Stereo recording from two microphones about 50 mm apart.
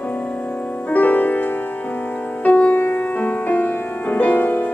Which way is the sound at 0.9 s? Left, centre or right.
Left.